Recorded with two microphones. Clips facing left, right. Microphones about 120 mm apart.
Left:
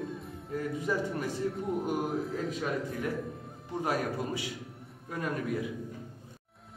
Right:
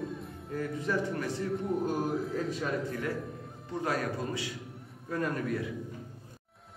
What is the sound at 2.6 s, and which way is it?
A man's voice, 15° left (ahead or behind).